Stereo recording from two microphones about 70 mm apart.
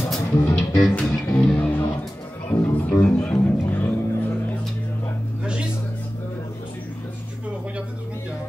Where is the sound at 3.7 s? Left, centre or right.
Left.